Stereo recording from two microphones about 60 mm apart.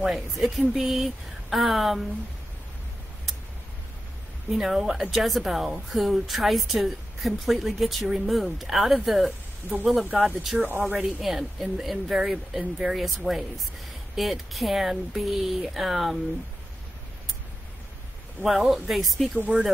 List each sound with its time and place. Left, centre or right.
0.0 s a woman's voice: centre
4.5 s a woman's voice: centre
18.4 s a woman's voice: centre
19.3 s speech: right